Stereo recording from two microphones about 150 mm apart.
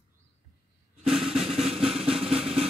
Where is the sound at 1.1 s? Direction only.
Centre (ahead or behind).